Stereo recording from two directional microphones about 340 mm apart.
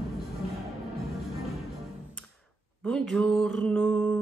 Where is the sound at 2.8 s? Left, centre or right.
Centre.